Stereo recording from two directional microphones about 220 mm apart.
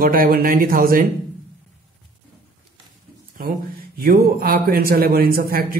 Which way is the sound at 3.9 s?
45° right (ahead or behind).